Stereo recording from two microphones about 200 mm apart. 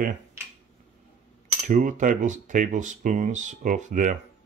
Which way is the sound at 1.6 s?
40° right (ahead or behind).